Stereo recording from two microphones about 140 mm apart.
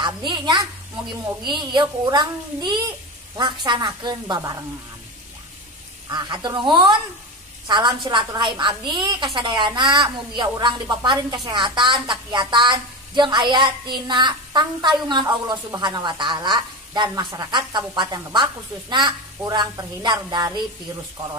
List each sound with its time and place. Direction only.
0.0 s a woman's voice: 35° right (ahead or behind)
6.0 s a woman's voice: 30° right (ahead or behind)